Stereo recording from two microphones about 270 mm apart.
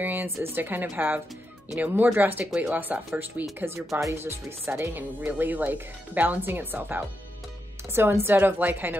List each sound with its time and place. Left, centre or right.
0.0 s speech: centre